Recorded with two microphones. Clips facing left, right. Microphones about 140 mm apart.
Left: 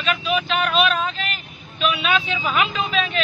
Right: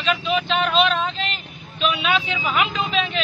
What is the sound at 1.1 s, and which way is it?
Vehicle, 25° right (ahead or behind).